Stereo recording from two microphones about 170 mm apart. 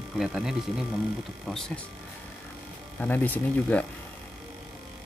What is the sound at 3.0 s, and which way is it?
Speech, 10° left (ahead or behind).